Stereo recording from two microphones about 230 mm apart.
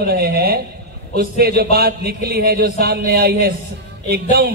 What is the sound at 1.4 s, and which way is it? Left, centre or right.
Speech, right.